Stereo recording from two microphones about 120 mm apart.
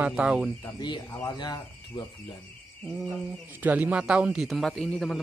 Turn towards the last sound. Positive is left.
turn(degrees=5)  # may be behind; listen again after turning